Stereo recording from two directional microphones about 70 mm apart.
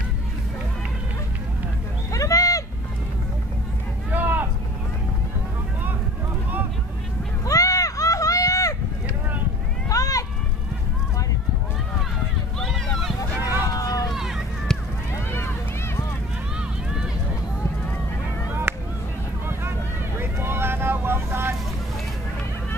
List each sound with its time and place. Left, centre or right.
2.1 s a sound: left
4.1 s vehicle: right
7.4 s run: left
9.8 s a sound: left
12.5 s a sound: centre
13.7 s run: left
14.1 s run: centre
14.7 s run: centre
16.5 s run: centre
20.2 s vehicle: right